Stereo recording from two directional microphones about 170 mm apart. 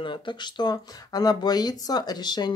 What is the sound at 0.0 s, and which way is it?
Speech, 30° left (ahead or behind).